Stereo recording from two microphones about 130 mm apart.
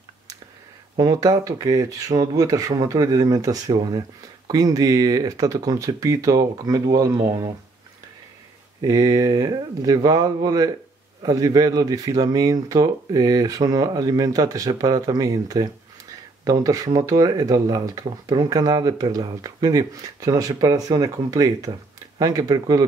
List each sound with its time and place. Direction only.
0.9 s speech: 25° right (ahead or behind)
8.8 s speech: 30° right (ahead or behind)